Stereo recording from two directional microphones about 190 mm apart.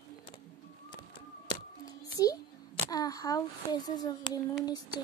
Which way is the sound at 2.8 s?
20° left (ahead or behind).